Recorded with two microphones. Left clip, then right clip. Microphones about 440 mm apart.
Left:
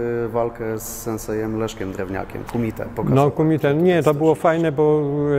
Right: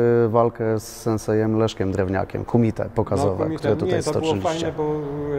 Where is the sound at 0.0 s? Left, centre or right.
Right.